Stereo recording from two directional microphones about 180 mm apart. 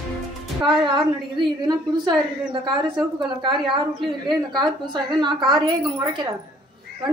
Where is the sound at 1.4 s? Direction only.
25° right (ahead or behind).